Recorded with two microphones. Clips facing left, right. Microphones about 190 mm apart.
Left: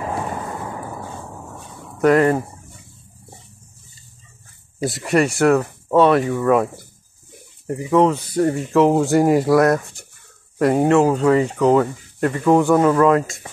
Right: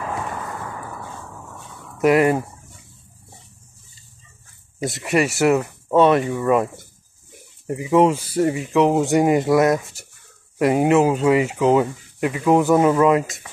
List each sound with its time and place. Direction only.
0.0 s a sound: 25° left (ahead or behind)
2.0 s speech: 5° right (ahead or behind)
4.8 s speech: centre (ahead or behind)